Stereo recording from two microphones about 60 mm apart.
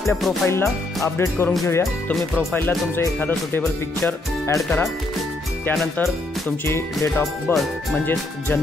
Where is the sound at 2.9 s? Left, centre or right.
Left.